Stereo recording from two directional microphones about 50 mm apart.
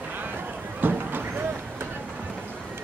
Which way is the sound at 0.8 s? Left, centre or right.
Right.